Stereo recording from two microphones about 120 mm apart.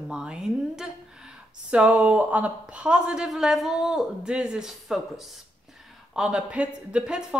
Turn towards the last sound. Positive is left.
turn(degrees=-5)  # may be behind; listen again after turning